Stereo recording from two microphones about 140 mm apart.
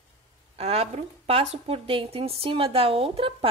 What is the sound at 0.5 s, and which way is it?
A woman's voice, 50° right (ahead or behind).